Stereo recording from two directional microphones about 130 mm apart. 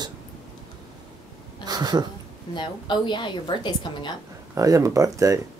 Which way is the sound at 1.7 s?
30° right (ahead or behind).